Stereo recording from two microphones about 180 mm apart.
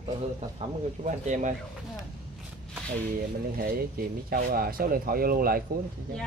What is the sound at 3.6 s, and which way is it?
Speech, 55° right (ahead or behind).